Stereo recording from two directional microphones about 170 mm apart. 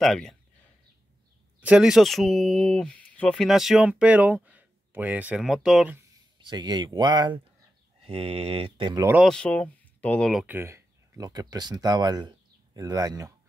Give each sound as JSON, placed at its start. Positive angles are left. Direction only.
{"t": 0.0, "sound": "speech", "side_deg": 0}
{"t": 1.6, "sound": "speech", "side_deg": -5}
{"t": 6.4, "sound": "speech", "side_deg": -25}
{"t": 9.2, "sound": "speech", "side_deg": 5}
{"t": 10.4, "sound": "speech", "side_deg": -10}